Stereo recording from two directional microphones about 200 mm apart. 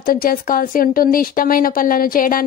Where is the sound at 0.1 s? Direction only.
45° left (ahead or behind).